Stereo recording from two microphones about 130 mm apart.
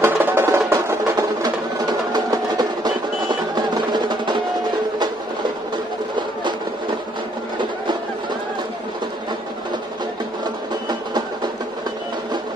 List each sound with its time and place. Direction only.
0.0 s music: 15° right (ahead or behind)
1.4 s music: 30° right (ahead or behind)
7.5 s a sound: 35° right (ahead or behind)